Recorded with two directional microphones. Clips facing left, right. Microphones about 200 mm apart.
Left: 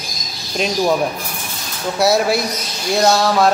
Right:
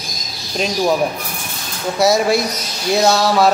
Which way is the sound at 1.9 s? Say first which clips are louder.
Right 1 dB; centre (ahead or behind).